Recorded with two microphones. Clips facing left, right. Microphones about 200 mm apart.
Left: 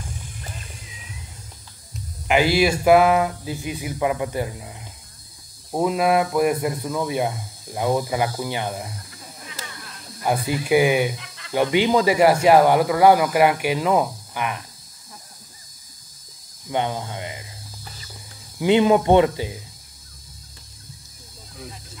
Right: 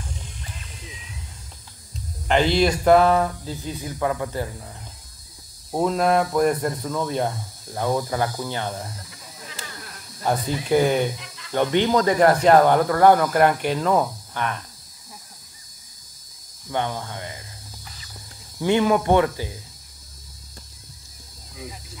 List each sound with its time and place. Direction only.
2.2 s speech: 10° left (ahead or behind)
10.2 s speech: 10° left (ahead or behind)
16.7 s speech: 15° left (ahead or behind)
18.6 s speech: 20° left (ahead or behind)